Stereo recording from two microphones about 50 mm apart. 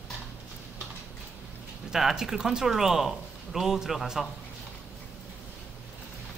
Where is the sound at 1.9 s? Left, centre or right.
Centre.